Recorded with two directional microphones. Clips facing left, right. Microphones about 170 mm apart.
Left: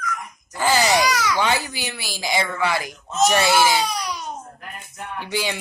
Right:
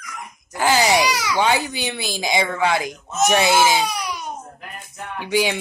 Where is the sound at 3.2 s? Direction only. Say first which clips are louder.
Right 1 dB; 15° right (ahead or behind).